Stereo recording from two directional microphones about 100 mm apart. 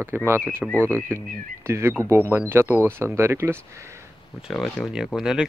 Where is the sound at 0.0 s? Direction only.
25° right (ahead or behind).